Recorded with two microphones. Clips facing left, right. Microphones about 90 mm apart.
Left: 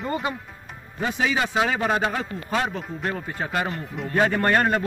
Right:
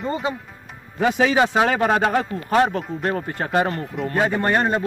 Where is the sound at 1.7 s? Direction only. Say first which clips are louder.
Right 4 dB; 50° right (ahead or behind).